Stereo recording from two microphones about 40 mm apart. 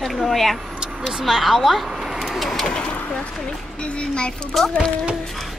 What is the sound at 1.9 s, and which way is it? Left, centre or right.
Bird, centre.